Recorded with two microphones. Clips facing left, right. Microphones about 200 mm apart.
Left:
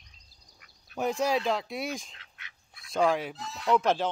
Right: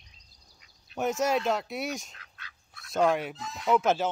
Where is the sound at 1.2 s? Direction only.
Centre (ahead or behind).